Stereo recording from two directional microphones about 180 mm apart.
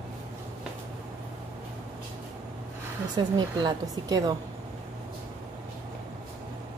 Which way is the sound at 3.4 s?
25° right (ahead or behind).